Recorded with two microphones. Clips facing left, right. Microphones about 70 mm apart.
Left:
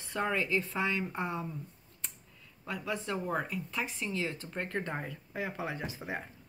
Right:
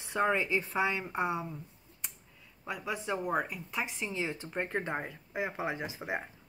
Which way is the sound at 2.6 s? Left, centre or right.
Centre.